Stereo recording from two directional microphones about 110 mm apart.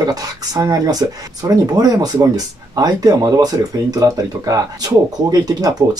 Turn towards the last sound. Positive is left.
turn(degrees=-35)  # may be behind; listen again after turning